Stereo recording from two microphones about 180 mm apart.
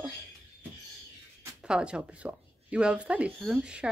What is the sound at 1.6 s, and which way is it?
Speech, 5° right (ahead or behind).